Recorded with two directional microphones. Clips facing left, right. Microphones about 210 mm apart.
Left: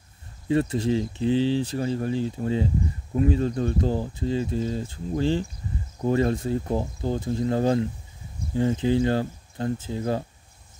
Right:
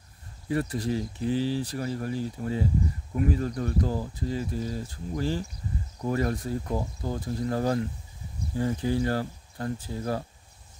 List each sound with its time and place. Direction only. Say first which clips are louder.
0.5 s speech: left 5 dB; 25° left (ahead or behind)